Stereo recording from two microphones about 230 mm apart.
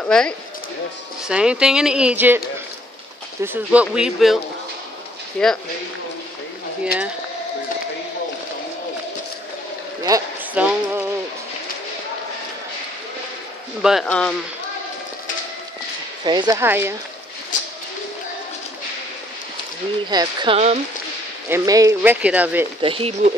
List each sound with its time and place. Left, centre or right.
0.0 s speech: centre
3.4 s speech: centre
5.4 s speech: centre
10.0 s a sound: centre
13.8 s speech: centre
16.3 s speech: centre
20.1 s speech: centre
21.5 s speech: centre
22.8 s speech: right